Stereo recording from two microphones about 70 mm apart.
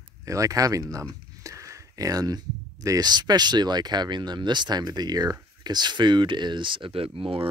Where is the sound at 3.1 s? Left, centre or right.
Right.